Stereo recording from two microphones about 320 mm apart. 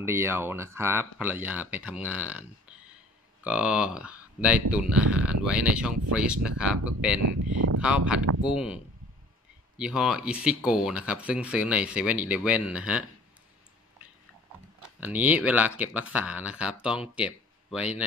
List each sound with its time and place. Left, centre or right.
0.0 s speech: centre
3.4 s speech: centre
7.2 s speech: right
7.8 s speech: centre
14.8 s speech: centre